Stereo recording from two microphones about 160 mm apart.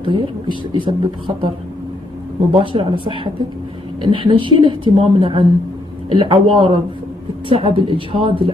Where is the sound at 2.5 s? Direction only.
30° right (ahead or behind).